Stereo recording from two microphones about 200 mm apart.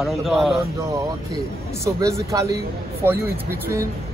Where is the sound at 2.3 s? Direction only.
15° right (ahead or behind).